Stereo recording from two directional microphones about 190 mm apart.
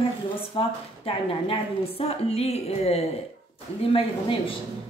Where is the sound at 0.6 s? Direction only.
30° left (ahead or behind).